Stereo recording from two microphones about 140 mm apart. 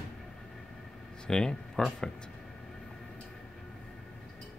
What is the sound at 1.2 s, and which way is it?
Speech, 5° left (ahead or behind).